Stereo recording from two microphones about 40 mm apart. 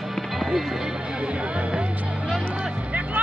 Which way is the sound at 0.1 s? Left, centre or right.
Centre.